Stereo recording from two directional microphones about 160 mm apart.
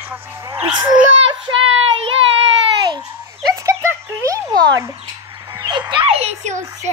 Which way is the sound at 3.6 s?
20° right (ahead or behind).